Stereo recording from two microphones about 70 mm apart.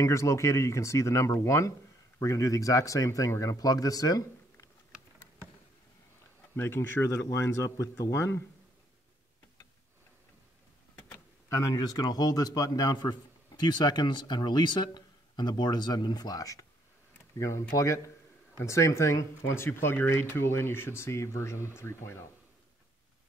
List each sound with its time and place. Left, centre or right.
0.0 s speech: left
6.5 s speech: left
7.2 s speech: left
11.4 s speech: left
11.8 s a man's voice: left
17.4 s speech: left